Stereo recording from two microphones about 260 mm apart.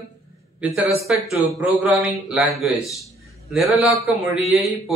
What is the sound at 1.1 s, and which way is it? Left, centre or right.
Speech, centre.